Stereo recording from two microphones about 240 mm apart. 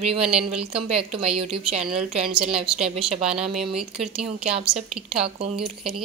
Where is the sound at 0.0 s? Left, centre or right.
Right.